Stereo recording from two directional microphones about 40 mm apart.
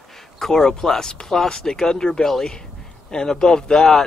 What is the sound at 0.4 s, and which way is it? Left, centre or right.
A man's voice, centre.